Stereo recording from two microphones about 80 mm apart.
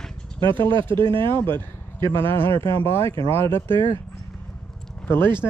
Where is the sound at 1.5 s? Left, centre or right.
Right.